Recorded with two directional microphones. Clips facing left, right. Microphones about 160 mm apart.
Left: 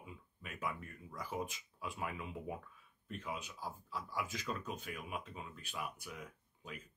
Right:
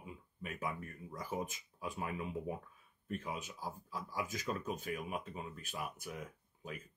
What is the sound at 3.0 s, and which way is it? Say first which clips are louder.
Speech: right 3 dB; 45° right (ahead or behind).